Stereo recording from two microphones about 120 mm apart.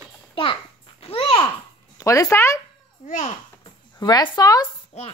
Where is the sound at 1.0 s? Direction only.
50° left (ahead or behind).